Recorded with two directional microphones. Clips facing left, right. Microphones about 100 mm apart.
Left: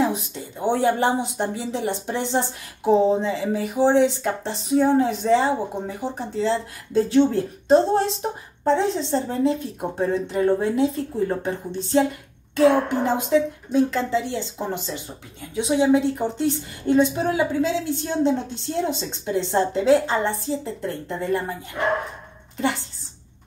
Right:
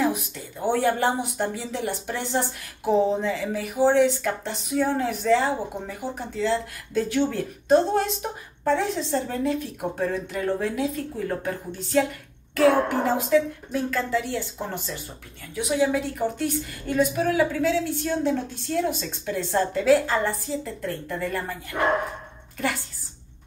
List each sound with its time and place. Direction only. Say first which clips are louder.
0.0 s speech: left 2 dB; 25° left (ahead or behind)